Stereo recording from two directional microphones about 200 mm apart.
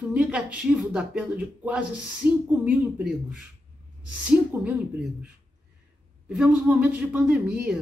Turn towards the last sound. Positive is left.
turn(degrees=-5)  # may be behind; listen again after turning